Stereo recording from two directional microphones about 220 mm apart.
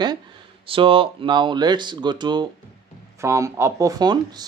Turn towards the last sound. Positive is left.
turn(degrees=-20)  # may be behind; listen again after turning